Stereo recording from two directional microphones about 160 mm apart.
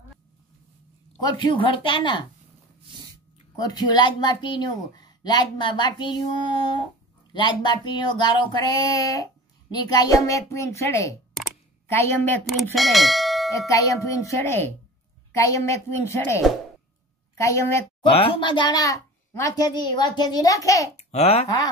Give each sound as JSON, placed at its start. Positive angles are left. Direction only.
{"t": 1.2, "sound": "speech", "side_deg": 30}
{"t": 3.5, "sound": "a woman's voice", "side_deg": 25}
{"t": 12.4, "sound": "speech", "side_deg": 0}
{"t": 13.7, "sound": "a woman's voice", "side_deg": 20}
{"t": 18.2, "sound": "speech", "side_deg": 30}
{"t": 20.9, "sound": "a child's voice", "side_deg": 40}